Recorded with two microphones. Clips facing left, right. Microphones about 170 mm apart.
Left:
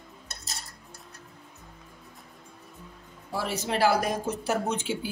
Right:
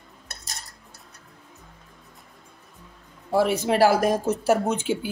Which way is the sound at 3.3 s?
55° right (ahead or behind).